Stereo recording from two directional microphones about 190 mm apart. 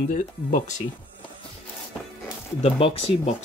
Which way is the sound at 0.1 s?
45° left (ahead or behind).